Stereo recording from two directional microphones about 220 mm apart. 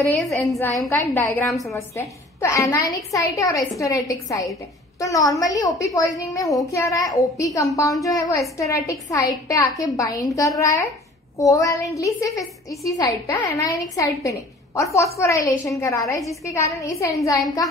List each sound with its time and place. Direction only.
0.4 s a woman's voice: 15° left (ahead or behind)
0.7 s a woman's voice: centre (ahead or behind)
1.1 s a woman's voice: 10° left (ahead or behind)
1.5 s a woman's voice: centre (ahead or behind)
2.0 s a woman's voice: 15° left (ahead or behind)
11.3 s a woman's voice: 15° left (ahead or behind)